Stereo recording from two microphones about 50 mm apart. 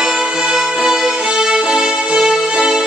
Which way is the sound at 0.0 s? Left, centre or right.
Centre.